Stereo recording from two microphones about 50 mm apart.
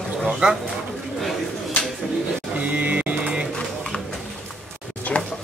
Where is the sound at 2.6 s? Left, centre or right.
Right.